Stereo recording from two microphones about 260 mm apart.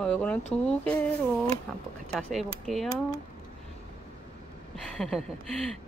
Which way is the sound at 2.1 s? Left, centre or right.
Centre.